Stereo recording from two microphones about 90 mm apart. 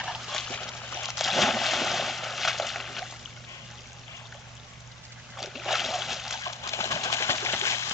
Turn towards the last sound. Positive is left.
turn(degrees=30)  # may be behind; listen again after turning